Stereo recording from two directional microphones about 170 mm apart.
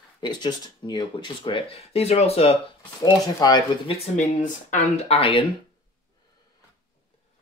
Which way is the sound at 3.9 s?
40° left (ahead or behind).